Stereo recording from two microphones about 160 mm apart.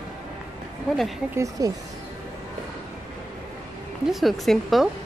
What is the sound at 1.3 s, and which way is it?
Speech, 20° right (ahead or behind).